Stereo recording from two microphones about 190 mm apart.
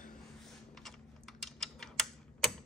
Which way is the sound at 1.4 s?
Centre (ahead or behind).